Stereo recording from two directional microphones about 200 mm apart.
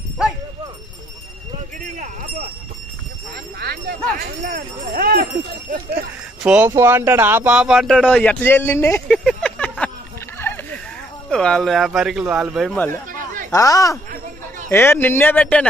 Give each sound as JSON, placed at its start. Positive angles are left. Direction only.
{"t": 3.5, "sound": "speech", "side_deg": -50}
{"t": 6.4, "sound": "speech", "side_deg": -5}
{"t": 8.2, "sound": "a man's voice", "side_deg": 10}
{"t": 9.0, "sound": "a sound", "side_deg": 5}
{"t": 11.2, "sound": "speech", "side_deg": 5}
{"t": 13.5, "sound": "a man's voice", "side_deg": 15}